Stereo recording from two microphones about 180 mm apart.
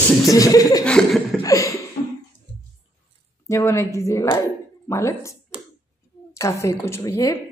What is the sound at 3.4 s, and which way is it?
A woman's voice, 15° left (ahead or behind).